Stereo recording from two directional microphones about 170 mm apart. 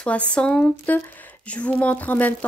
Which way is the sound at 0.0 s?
5° left (ahead or behind).